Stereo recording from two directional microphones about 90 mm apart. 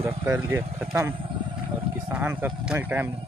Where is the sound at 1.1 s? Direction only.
70° right (ahead or behind).